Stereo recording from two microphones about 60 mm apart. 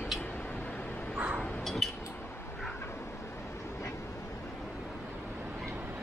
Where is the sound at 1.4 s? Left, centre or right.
Centre.